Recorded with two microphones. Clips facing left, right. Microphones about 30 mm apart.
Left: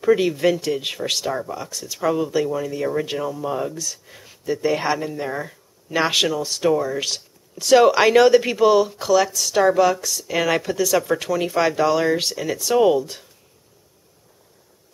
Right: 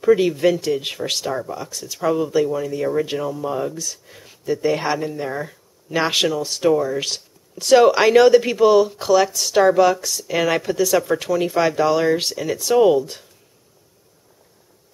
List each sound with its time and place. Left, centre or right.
0.0 s speech: centre
9.0 s speech: centre
9.6 s speech: centre